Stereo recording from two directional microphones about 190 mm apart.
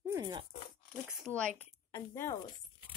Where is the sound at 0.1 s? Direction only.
20° right (ahead or behind).